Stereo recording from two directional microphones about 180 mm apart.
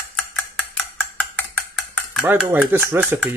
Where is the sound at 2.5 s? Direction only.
10° right (ahead or behind).